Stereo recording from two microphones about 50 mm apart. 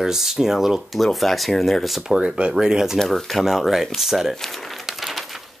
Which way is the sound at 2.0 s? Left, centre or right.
Centre.